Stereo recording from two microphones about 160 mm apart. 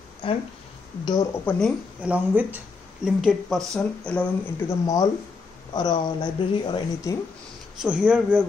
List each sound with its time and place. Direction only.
0.2 s speech: 35° left (ahead or behind)
1.0 s speech: 25° left (ahead or behind)
1.4 s speech: 10° left (ahead or behind)
2.0 s a man's voice: 10° right (ahead or behind); by 4.7 s 10° left (ahead or behind)
4.8 s speech: 20° left (ahead or behind)
7.8 s a man's voice: 5° right (ahead or behind)